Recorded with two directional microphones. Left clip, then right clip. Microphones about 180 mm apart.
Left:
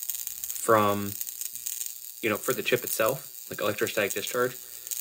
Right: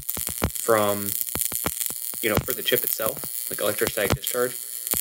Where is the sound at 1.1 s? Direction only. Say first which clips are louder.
Right 7 dB; 20° right (ahead or behind).